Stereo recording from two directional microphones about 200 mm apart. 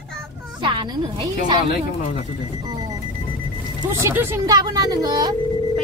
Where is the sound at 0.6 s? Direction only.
25° right (ahead or behind).